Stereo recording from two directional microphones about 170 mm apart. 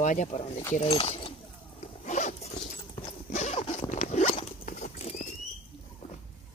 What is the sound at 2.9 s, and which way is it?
Dog, 30° left (ahead or behind).